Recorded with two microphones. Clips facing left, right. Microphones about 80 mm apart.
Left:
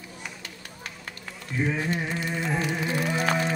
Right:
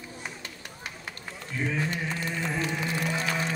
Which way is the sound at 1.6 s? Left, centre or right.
Left.